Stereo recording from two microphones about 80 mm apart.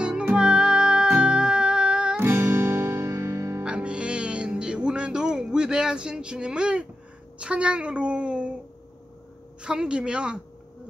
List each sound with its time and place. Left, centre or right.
0.0 s music: centre
2.1 s music: right
3.6 s music: centre
7.3 s a woman's voice: centre
9.6 s a woman's voice: centre